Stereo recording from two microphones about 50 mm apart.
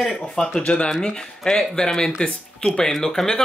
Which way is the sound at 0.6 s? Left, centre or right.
Left.